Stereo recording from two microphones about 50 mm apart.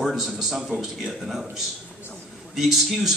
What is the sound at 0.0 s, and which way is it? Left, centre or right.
A man's voice, centre.